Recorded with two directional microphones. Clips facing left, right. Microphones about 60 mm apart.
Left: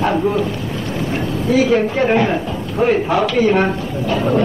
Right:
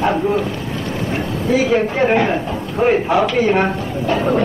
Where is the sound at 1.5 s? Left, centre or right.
Centre.